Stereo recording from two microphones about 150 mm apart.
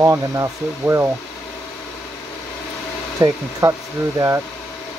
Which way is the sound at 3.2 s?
25° right (ahead or behind).